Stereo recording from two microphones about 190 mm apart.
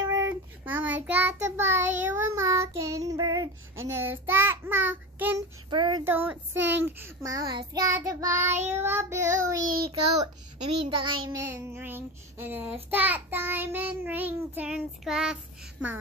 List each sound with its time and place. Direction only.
0.0 s child singing: 20° right (ahead or behind)
5.7 s child singing: 25° right (ahead or behind)
6.0 s child singing: 10° right (ahead or behind)
6.5 s speech: 70° right (ahead or behind)
6.8 s child singing: 10° right (ahead or behind)
11.0 s child singing: 20° right (ahead or behind)